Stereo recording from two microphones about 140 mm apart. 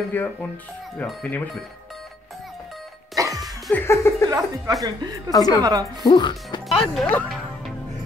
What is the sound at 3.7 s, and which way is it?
Speech, 20° left (ahead or behind).